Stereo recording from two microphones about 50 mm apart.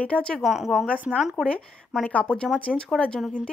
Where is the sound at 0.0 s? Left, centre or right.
Centre.